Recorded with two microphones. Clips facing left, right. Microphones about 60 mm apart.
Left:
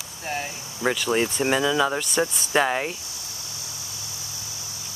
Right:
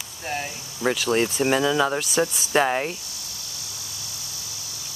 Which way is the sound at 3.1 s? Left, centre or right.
Left.